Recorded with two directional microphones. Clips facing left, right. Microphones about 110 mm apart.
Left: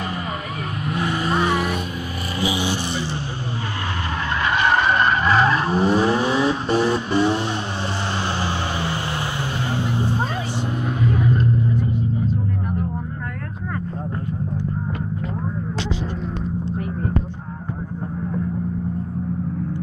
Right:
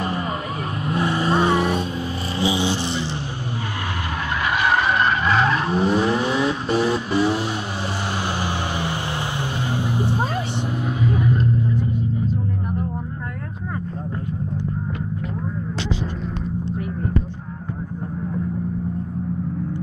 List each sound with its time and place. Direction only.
0.0 s vehicle: 40° right (ahead or behind); by 3.1 s 20° right (ahead or behind)
4.3 s vehicle: 5° right (ahead or behind)